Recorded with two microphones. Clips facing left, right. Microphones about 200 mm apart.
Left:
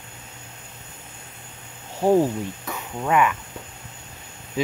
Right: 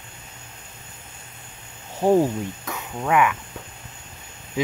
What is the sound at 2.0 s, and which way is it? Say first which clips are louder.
Speech: even; 10° left (ahead or behind).